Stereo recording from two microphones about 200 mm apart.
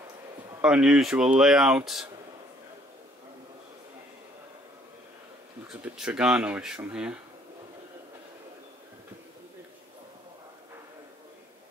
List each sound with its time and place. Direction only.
0.6 s speech: 5° right (ahead or behind)
5.7 s speech: 5° right (ahead or behind)